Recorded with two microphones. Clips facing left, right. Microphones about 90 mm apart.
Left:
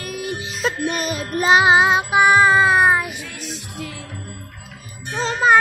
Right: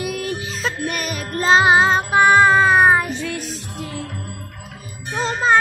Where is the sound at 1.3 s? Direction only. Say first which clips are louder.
Even; 15° left (ahead or behind).